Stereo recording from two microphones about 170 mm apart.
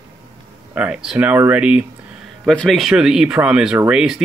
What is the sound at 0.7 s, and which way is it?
Speech, 5° right (ahead or behind).